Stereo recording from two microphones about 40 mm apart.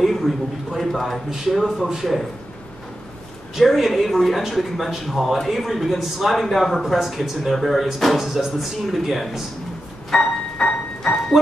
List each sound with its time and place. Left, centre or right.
0.0 s speech: centre
1.7 s speech: centre
3.5 s speech: centre
10.1 s music: centre